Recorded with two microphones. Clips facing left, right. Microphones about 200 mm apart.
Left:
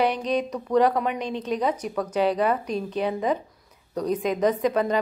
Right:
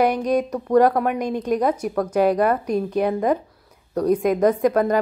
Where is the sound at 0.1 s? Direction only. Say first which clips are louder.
Right 5 dB; 10° right (ahead or behind).